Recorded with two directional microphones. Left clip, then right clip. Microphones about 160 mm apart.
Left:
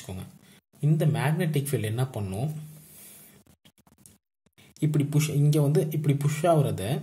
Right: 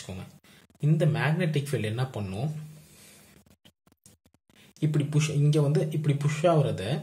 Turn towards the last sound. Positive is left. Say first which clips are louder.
# left 1 dB
turn(degrees=35)  # may be behind; listen again after turning